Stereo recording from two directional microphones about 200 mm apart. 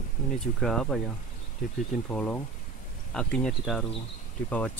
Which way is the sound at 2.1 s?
5° left (ahead or behind).